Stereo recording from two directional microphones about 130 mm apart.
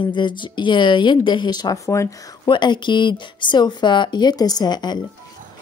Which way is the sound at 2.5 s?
35° left (ahead or behind).